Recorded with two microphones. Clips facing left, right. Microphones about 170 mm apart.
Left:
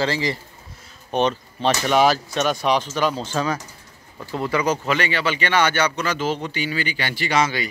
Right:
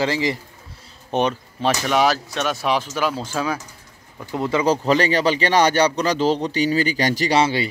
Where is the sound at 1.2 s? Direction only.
5° right (ahead or behind).